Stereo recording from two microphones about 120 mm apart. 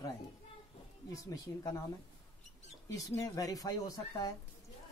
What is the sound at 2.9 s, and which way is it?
Speech, 25° left (ahead or behind).